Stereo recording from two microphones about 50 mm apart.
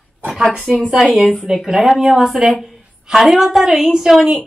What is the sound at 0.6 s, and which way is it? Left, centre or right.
A woman's voice, centre.